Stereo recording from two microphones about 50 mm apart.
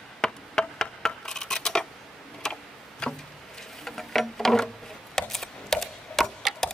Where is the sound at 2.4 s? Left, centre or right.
Centre.